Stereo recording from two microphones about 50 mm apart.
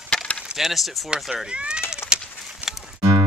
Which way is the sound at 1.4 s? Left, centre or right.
Centre.